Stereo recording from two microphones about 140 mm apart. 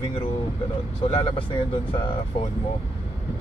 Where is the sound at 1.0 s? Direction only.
35° left (ahead or behind).